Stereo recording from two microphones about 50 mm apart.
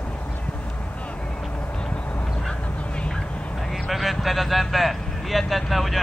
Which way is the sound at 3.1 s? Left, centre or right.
Centre.